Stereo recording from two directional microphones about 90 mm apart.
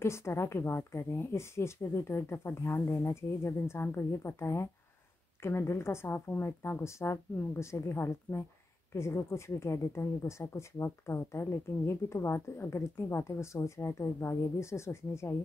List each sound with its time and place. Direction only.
0.0 s a woman's voice: 30° left (ahead or behind)